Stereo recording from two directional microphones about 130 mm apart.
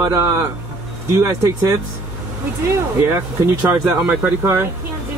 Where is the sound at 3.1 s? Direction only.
15° right (ahead or behind).